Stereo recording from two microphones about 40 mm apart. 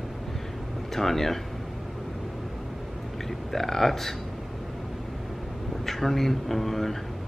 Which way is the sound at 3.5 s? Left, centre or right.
Centre.